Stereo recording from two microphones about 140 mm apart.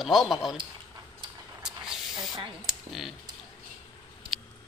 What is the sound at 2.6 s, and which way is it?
Speech, 5° right (ahead or behind).